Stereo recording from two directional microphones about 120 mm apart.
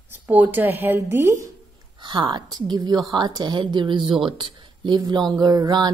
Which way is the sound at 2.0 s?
45° right (ahead or behind).